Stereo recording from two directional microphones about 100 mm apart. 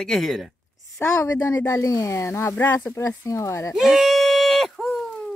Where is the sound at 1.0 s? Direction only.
25° left (ahead or behind).